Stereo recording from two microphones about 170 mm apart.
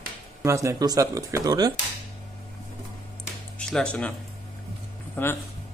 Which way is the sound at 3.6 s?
5° left (ahead or behind).